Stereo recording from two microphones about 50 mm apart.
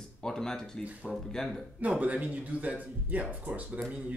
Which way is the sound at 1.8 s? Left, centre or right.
Right.